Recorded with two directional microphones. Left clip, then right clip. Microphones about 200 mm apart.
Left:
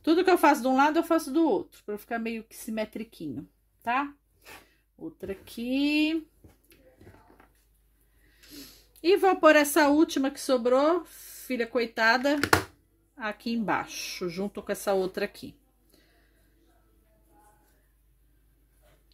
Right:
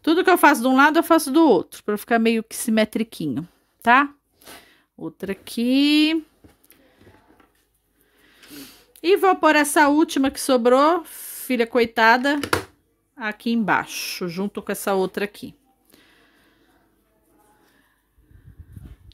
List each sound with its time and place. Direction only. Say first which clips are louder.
0.0 s speech: right 6 dB; 35° right (ahead or behind)
8.5 s speech: right 6 dB; 35° right (ahead or behind)